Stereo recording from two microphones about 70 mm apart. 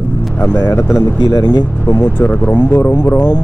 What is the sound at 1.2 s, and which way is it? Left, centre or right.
Speech, left.